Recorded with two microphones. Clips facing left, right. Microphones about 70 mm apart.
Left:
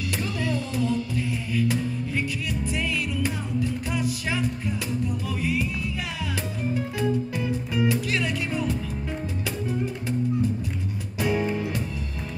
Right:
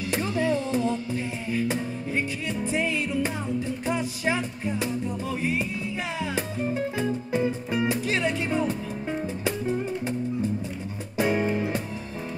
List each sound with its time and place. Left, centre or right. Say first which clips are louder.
0.1 s music: right 5 dB; right
6.7 s music: left 3 dB; right